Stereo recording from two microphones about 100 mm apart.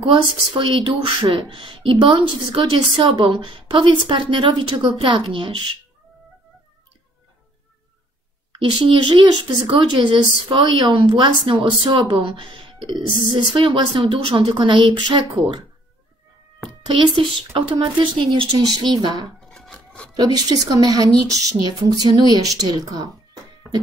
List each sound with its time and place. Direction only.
0.0 s speech: 60° right (ahead or behind)
8.5 s speech: 55° right (ahead or behind)
16.8 s speech: 55° right (ahead or behind)
19.2 s a sound: 5° left (ahead or behind)
20.2 s a woman's voice: 40° right (ahead or behind)